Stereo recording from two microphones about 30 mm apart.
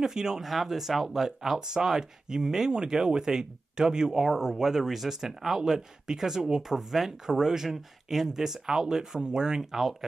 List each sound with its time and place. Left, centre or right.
0.0 s speech: centre
0.5 s speech: centre
6.9 s speech: centre
7.2 s speech: centre
9.6 s speech: centre